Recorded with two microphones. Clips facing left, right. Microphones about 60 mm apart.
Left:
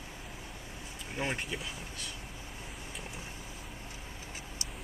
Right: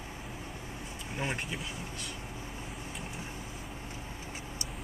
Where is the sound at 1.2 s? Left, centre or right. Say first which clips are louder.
Even; centre.